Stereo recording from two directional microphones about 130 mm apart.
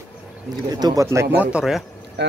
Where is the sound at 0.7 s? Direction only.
30° right (ahead or behind).